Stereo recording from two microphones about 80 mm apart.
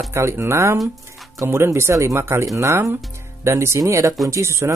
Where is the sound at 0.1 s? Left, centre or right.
Right.